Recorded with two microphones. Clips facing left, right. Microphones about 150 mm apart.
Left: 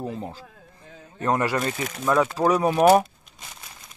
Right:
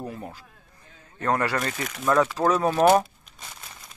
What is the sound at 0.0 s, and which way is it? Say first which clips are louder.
Speech: left 4 dB; 20° left (ahead or behind).